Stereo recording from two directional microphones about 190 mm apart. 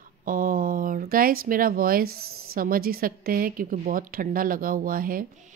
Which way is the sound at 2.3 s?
90° right.